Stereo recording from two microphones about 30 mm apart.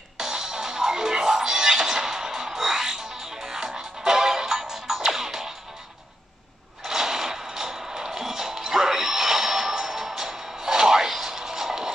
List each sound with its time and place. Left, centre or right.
0.2 s music: right
6.8 s music: centre